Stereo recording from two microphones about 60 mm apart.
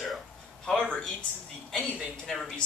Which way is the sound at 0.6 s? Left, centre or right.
Centre.